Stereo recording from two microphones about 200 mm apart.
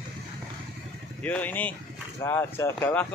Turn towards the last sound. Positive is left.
turn(degrees=10)  # may be behind; listen again after turning